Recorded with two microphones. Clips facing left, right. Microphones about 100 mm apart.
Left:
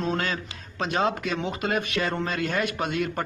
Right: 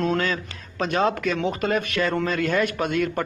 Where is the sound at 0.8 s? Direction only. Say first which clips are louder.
Right 3 dB; 45° right (ahead or behind).